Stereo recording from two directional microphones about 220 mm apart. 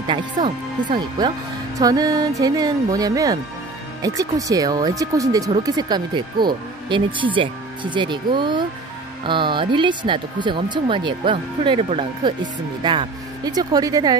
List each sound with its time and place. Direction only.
1.8 s speech: 15° right (ahead or behind)